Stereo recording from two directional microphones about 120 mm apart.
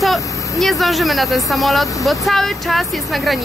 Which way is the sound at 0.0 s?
Centre (ahead or behind).